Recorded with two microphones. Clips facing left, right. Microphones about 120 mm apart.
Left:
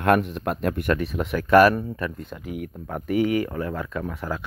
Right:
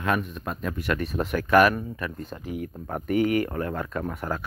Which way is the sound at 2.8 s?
10° right (ahead or behind).